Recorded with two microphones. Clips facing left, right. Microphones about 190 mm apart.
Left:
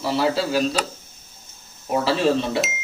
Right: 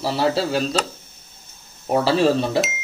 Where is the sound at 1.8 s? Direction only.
35° right (ahead or behind).